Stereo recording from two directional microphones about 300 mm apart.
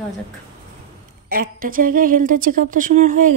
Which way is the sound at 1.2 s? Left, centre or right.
Right.